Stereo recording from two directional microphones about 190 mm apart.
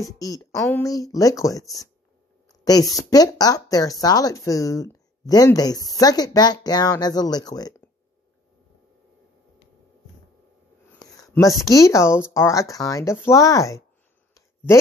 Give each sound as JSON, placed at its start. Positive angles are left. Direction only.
{"t": 0.0, "sound": "speech", "side_deg": 20}
{"t": 11.0, "sound": "speech", "side_deg": 20}
{"t": 14.3, "sound": "a sound", "side_deg": 15}